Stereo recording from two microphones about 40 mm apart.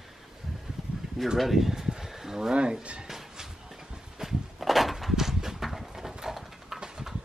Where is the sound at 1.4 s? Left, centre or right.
Centre.